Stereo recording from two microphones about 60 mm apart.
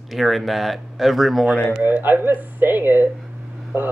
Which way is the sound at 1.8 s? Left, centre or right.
Right.